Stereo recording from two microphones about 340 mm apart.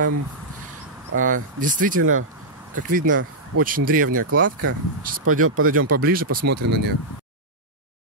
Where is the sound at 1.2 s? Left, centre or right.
Right.